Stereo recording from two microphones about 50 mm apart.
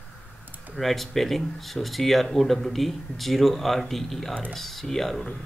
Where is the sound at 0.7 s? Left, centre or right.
Centre.